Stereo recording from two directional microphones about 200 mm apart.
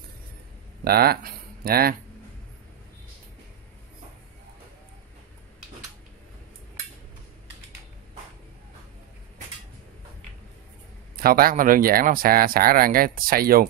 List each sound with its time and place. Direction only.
0.8 s speech: 50° right (ahead or behind)
11.1 s speech: 50° right (ahead or behind)